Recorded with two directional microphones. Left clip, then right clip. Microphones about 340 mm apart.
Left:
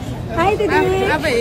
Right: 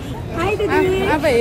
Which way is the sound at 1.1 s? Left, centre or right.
Centre.